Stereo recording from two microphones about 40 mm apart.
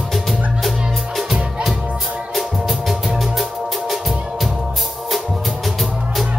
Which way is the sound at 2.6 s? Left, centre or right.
Centre.